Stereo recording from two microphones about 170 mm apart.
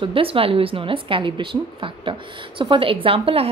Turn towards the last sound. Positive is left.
turn(degrees=-35)  # may be behind; listen again after turning